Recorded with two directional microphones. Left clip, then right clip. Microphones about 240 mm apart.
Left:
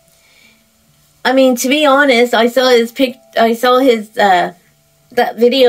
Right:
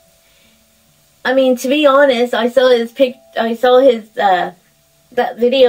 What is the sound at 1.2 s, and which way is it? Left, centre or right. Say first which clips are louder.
Speech: left 2 dB; left.